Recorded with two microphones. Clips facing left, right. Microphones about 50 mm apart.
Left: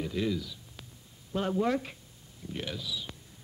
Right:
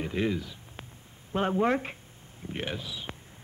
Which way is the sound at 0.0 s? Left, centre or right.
Right.